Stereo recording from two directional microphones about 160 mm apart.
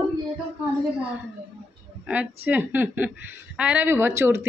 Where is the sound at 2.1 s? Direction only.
10° right (ahead or behind).